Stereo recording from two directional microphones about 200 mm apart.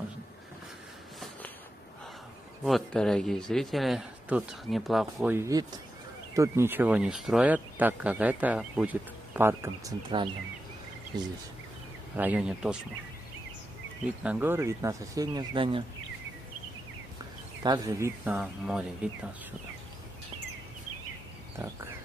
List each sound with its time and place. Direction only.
2.6 s speech: centre (ahead or behind)
5.3 s speech: 15° right (ahead or behind)
12.2 s speech: 5° right (ahead or behind)
14.0 s speech: 5° right (ahead or behind); by 15.8 s 25° right (ahead or behind)
17.6 s speech: 20° right (ahead or behind)